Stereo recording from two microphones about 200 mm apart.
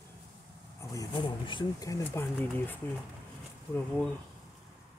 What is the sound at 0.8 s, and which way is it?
Speech, 15° left (ahead or behind).